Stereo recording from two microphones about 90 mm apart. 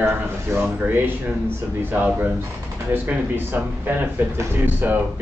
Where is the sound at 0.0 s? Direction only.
25° right (ahead or behind).